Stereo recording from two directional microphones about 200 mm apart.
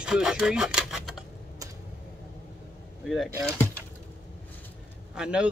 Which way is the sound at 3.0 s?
Centre (ahead or behind).